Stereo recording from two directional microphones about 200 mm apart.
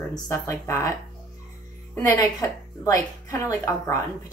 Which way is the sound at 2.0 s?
20° left (ahead or behind).